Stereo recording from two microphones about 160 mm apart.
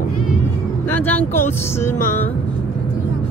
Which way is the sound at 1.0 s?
10° left (ahead or behind).